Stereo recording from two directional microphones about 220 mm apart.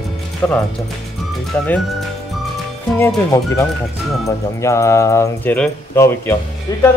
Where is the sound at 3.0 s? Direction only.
15° left (ahead or behind).